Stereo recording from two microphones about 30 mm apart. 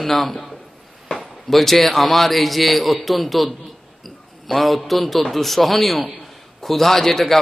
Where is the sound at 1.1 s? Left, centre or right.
Left.